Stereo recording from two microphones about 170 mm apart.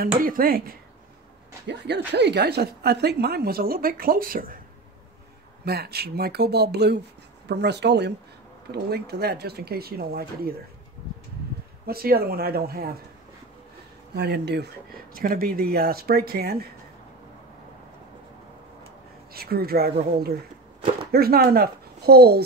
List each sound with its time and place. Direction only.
0.0 s speech: 55° right (ahead or behind)
1.7 s speech: 90° right; by 4.6 s 55° right (ahead or behind)
5.7 s speech: 70° right (ahead or behind); by 8.1 s 85° right
8.7 s speech: 70° right (ahead or behind)
11.8 s speech: 65° right (ahead or behind)
14.1 s speech: 75° right (ahead or behind)
15.1 s speech: 60° right (ahead or behind)
19.3 s speech: 65° right (ahead or behind)